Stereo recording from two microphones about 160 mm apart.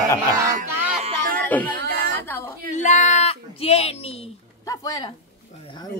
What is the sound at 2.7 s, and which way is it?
Speech, 50° left (ahead or behind).